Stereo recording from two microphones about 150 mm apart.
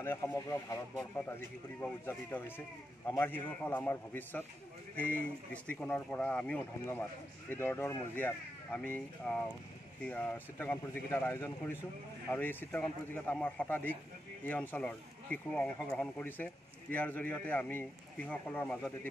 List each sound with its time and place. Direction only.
0.0 s speech: 15° left (ahead or behind)
1.8 s speech: 15° left (ahead or behind)